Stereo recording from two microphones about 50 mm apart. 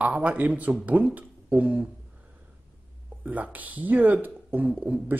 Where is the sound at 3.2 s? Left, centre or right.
Right.